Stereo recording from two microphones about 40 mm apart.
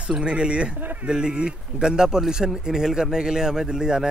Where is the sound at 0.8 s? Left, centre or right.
Right.